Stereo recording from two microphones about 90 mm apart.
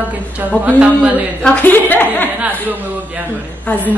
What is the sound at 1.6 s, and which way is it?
Speech, 20° left (ahead or behind).